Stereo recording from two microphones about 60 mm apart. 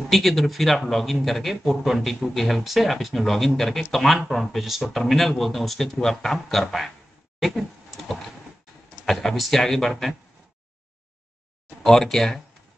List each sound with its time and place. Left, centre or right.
0.1 s speech: centre
7.3 s a sound: centre
9.0 s speech: centre
11.8 s speech: centre